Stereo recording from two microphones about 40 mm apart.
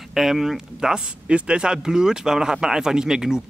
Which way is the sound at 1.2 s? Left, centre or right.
Right.